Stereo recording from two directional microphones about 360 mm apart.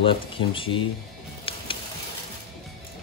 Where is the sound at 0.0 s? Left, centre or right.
Centre.